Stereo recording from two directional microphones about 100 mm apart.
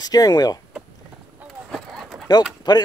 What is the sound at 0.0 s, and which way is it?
Speech, 40° left (ahead or behind).